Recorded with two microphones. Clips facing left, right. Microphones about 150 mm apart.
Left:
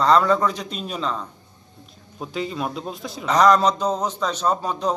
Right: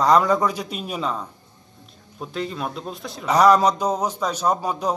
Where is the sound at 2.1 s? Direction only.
Centre (ahead or behind).